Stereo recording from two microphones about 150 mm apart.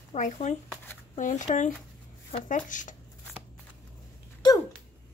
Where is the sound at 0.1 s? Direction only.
50° left (ahead or behind).